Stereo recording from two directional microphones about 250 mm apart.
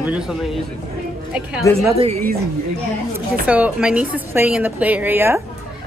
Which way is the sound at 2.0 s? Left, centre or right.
Right.